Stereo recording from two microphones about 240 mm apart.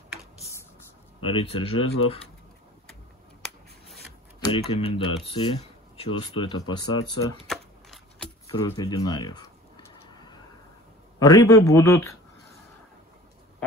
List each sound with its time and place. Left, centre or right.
1.2 s speech: left
4.5 s speech: left
7.4 s a sound: centre
8.5 s speech: centre
11.1 s speech: centre